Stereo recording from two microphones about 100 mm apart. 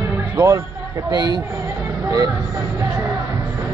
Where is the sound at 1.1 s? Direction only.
50° right (ahead or behind).